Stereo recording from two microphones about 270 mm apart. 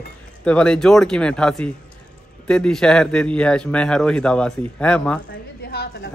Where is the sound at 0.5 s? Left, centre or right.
Centre.